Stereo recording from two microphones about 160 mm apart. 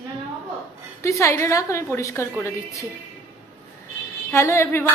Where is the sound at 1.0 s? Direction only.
20° left (ahead or behind).